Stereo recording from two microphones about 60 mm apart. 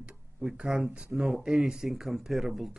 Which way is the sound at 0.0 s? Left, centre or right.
Centre.